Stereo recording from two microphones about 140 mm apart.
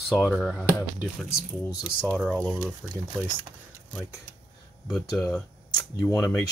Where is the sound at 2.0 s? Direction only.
Centre (ahead or behind).